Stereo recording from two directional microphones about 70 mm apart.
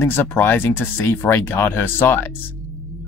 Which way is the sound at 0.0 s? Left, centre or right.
Left.